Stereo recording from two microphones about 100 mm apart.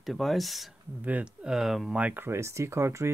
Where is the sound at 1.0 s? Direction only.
15° right (ahead or behind).